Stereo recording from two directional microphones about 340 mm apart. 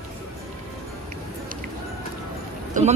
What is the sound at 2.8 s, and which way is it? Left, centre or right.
Speech, right.